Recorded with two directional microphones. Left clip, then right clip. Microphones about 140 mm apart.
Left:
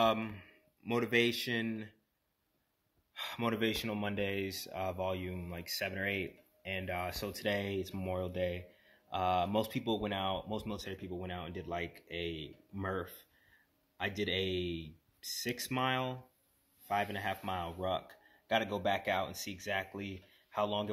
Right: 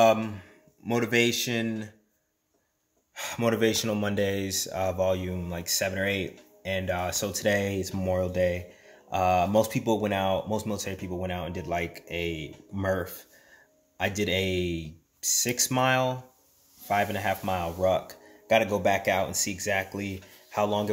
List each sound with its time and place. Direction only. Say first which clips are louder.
0.0 s speech: right 10 dB; 15° right (ahead or behind)
3.2 s speech: right 9 dB; 15° right (ahead or behind)